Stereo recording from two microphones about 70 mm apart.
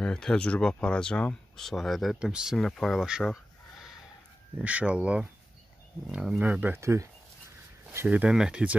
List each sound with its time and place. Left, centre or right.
0.0 s speech: centre
3.0 s speech: centre
4.6 s speech: centre
6.8 s speech: right
8.1 s speech: centre